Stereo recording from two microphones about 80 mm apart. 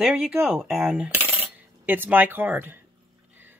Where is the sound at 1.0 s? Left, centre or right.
Right.